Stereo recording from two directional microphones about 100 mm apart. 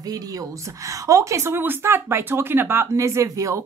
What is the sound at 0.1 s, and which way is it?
A woman's voice, 35° right (ahead or behind).